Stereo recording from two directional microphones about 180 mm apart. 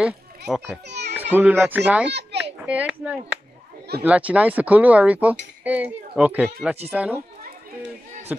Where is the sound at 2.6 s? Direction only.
5° right (ahead or behind).